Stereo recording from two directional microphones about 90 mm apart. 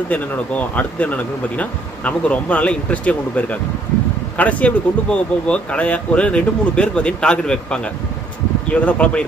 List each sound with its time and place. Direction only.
0.1 s speech: 15° left (ahead or behind)